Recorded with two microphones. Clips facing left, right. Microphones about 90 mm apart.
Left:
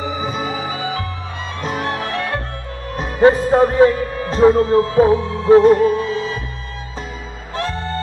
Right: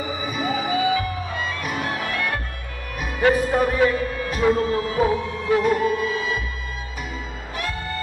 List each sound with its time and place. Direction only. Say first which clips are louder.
0.2 s music: left 2 dB; 25° left (ahead or behind)
3.0 s a man's voice: left 6 dB; 30° left (ahead or behind)
7.5 s music: left 6 dB; 30° left (ahead or behind)